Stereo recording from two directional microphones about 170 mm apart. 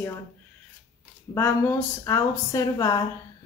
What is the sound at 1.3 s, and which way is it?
Speech, 15° left (ahead or behind).